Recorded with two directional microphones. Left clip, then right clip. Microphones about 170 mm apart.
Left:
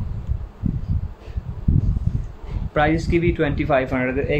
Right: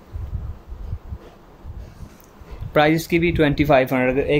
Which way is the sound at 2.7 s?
60° right (ahead or behind).